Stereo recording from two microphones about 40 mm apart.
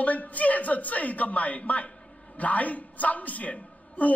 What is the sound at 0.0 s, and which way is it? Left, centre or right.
A man's voice, left.